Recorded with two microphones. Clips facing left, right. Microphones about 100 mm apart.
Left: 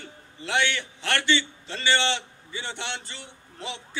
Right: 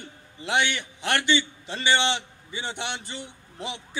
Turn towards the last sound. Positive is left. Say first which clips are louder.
# right 1 dB
turn(degrees=-15)  # may be behind; listen again after turning